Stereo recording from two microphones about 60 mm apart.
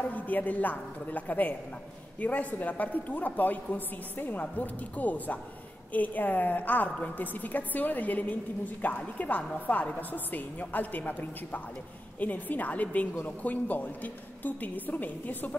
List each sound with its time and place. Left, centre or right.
0.1 s a woman's voice: left